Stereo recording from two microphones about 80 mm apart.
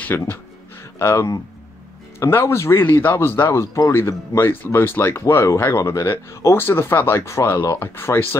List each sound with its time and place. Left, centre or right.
0.1 s speech: left
2.8 s speech: left